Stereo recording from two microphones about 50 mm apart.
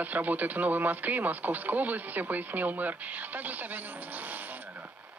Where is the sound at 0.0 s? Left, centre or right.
Right.